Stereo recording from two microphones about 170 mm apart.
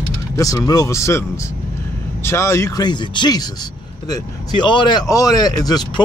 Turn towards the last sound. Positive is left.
turn(degrees=25)  # may be behind; listen again after turning